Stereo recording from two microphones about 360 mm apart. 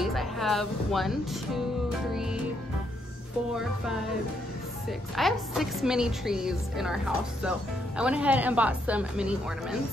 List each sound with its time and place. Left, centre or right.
0.0 s speech: centre
4.8 s a woman's voice: centre